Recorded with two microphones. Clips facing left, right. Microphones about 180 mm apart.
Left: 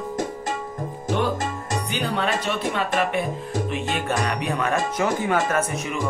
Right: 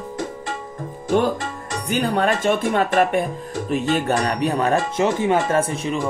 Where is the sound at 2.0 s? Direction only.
50° right (ahead or behind).